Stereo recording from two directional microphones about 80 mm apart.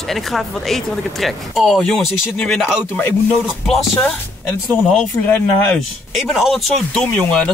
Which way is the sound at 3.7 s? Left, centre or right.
Centre.